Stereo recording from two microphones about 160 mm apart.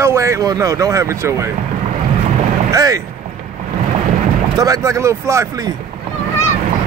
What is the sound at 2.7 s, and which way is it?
Speech, 20° right (ahead or behind).